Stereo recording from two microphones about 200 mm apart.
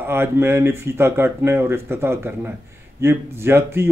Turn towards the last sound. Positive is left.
turn(degrees=-10)  # may be behind; listen again after turning